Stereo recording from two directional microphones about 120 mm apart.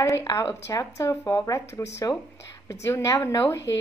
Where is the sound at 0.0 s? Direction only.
25° left (ahead or behind).